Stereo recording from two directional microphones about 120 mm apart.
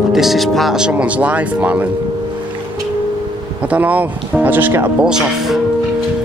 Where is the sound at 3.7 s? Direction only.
10° right (ahead or behind).